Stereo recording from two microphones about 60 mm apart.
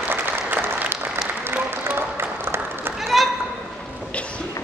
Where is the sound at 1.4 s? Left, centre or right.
Right.